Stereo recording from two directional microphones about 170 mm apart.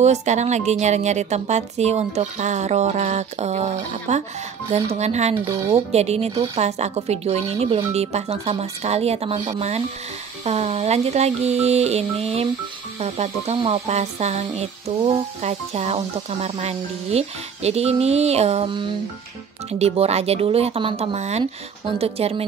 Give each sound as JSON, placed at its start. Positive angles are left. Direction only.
{"t": 0.0, "sound": "speech", "side_deg": -40}